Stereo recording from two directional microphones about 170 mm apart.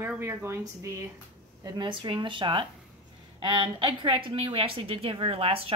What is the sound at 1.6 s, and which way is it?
A woman's voice, 25° right (ahead or behind).